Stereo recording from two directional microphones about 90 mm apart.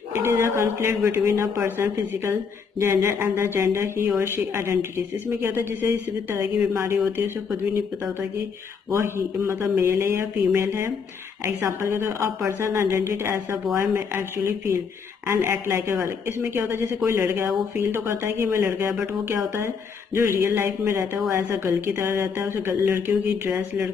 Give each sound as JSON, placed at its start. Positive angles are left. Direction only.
{"t": 0.1, "sound": "a woman's voice", "side_deg": -30}
{"t": 8.9, "sound": "a woman's voice", "side_deg": -30}